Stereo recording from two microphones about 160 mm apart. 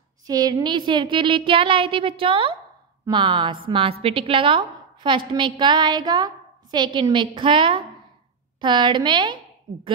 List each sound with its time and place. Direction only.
0.3 s a woman's voice: 25° right (ahead or behind)